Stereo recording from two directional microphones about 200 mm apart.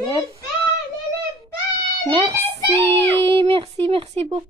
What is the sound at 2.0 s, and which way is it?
Speech, 25° right (ahead or behind).